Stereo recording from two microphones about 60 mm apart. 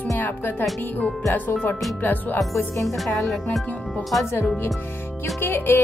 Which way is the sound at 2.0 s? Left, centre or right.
Left.